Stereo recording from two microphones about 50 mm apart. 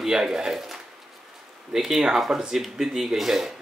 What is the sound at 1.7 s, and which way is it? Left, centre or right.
Speech, centre.